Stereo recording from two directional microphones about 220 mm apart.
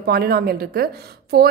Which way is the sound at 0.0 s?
45° right (ahead or behind).